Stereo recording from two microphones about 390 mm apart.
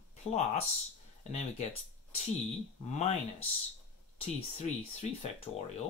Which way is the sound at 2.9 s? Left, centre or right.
Centre.